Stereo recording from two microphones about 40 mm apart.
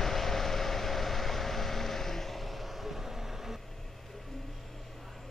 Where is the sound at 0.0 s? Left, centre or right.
Centre.